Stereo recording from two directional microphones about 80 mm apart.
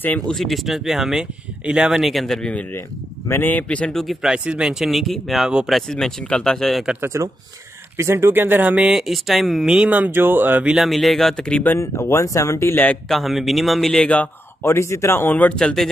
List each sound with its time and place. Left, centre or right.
0.3 s speech: centre
3.3 s speech: left
4.0 s speech: centre
7.0 s speech: right; by 9.8 s centre
9.8 s speech: centre
10.9 s speech: centre
11.8 s speech: left
13.1 s speech: centre
14.0 s speech: centre
14.6 s speech: left
15.5 s speech: centre